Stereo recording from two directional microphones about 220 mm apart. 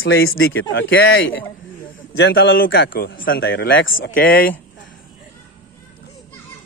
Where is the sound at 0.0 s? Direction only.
55° left (ahead or behind).